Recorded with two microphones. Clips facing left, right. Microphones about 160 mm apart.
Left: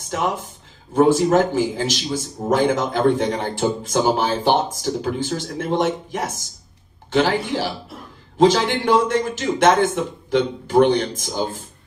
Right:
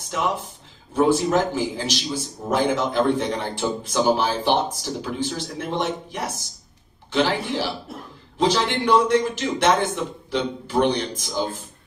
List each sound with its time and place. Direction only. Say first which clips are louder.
0.9 s a man's voice: left 4 dB; 50° left (ahead or behind)